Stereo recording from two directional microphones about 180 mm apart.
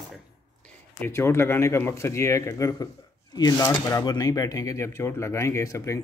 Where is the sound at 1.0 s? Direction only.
15° left (ahead or behind).